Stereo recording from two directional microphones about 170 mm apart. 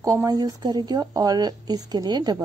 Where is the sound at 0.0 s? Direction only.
20° right (ahead or behind).